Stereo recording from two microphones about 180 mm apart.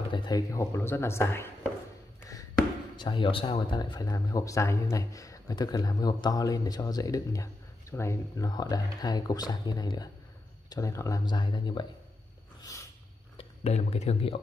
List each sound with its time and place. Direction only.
0.1 s speech: 25° left (ahead or behind)
3.0 s speech: 30° left (ahead or behind)
13.4 s speech: 35° left (ahead or behind)